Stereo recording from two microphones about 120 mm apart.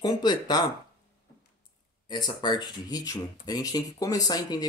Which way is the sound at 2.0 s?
35° left (ahead or behind).